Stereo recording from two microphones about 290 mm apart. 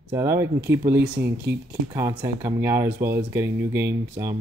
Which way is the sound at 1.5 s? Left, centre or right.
Right.